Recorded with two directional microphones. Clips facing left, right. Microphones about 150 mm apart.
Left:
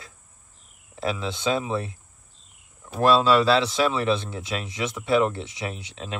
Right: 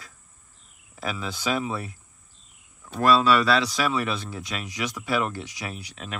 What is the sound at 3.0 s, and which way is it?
Speech, 25° left (ahead or behind).